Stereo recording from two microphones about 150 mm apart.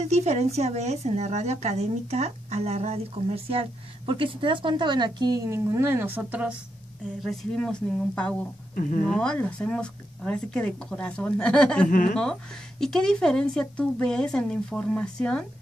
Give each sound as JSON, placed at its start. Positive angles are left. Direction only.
{"t": 0.1, "sound": "a woman's voice", "side_deg": -45}
{"t": 7.2, "sound": "speech", "side_deg": 5}
{"t": 8.7, "sound": "speech", "side_deg": 60}
{"t": 9.0, "sound": "speech", "side_deg": 5}